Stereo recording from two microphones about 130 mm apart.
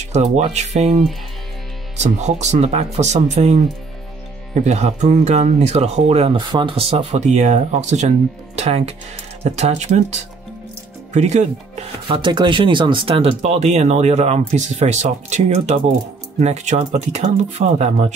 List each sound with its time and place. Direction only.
0.5 s speech: 60° right (ahead or behind)
4.6 s speech: 60° right (ahead or behind)
12.1 s speech: 35° right (ahead or behind); by 18.1 s 55° right (ahead or behind)